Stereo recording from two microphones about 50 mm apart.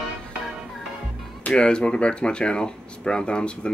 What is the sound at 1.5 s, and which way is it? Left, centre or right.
Speech, centre.